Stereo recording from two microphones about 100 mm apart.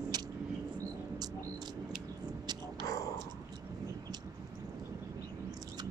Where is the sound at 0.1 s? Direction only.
40° right (ahead or behind).